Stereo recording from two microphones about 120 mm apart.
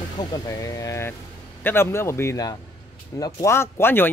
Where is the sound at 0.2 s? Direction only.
30° left (ahead or behind).